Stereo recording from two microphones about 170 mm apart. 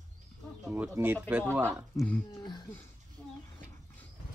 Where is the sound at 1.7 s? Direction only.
5° left (ahead or behind).